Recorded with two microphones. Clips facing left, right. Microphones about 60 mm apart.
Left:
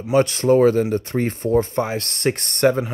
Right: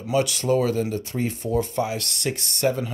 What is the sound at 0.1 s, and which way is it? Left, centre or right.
Speech, left.